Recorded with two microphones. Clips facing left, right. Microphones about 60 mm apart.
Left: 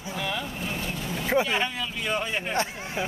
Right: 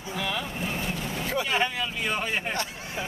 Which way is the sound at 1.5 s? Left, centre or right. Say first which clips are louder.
Right 1 dB; centre.